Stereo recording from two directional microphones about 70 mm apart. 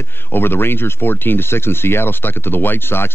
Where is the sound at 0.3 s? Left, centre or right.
Left.